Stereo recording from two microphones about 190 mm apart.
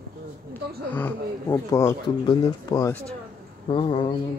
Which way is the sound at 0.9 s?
10° left (ahead or behind).